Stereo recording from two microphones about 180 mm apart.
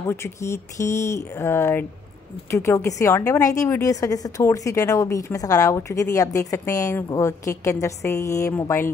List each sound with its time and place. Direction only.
0.1 s a woman's voice: 15° left (ahead or behind)